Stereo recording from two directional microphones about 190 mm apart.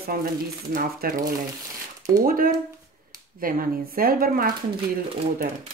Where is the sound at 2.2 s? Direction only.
50° right (ahead or behind).